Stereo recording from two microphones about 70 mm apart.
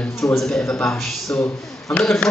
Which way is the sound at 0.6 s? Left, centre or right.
Left.